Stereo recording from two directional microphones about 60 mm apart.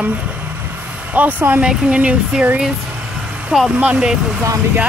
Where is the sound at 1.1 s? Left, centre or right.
Right.